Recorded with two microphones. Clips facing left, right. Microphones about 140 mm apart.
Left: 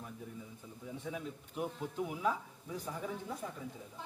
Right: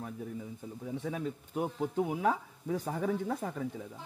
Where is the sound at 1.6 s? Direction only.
45° right (ahead or behind); by 3.6 s 65° right (ahead or behind).